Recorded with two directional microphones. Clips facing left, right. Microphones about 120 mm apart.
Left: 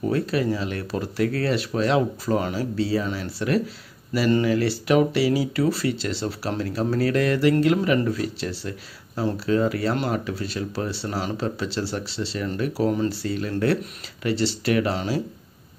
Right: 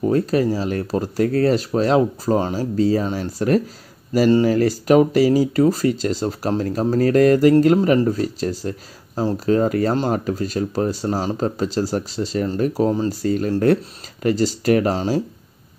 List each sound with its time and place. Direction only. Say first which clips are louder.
0.1 s speech: right 4 dB; 40° right (ahead or behind)